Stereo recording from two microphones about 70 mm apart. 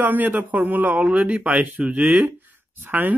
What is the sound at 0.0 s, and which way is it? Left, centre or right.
Speech, right.